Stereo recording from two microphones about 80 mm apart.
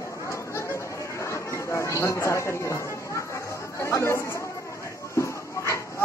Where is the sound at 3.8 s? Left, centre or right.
Left.